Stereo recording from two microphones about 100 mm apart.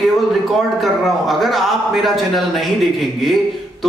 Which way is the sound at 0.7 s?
Centre (ahead or behind).